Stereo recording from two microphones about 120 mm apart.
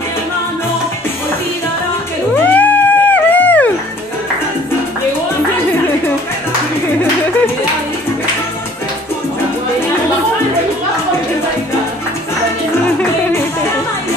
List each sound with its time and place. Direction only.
2.3 s music: 15° left (ahead or behind)